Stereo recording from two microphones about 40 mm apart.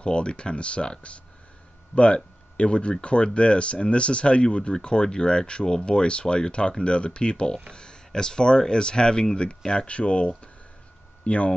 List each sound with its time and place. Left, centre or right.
0.0 s speech: left